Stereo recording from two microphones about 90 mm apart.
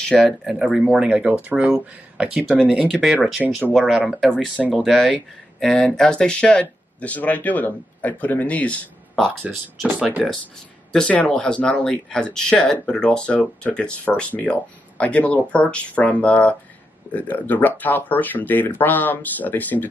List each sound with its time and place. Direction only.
0.0 s speech: 5° left (ahead or behind); by 4.9 s 10° right (ahead or behind)
5.6 s speech: 10° left (ahead or behind)
9.1 s speech: 5° left (ahead or behind); by 19.9 s 20° left (ahead or behind)